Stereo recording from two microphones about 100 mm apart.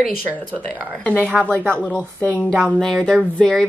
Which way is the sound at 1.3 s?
10° left (ahead or behind).